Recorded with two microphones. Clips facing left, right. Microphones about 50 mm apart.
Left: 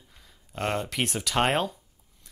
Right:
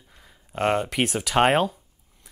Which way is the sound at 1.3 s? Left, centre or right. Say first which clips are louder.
Right 5 dB; centre.